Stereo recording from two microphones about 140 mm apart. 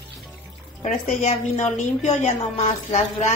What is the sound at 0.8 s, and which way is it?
A woman's voice, 55° left (ahead or behind).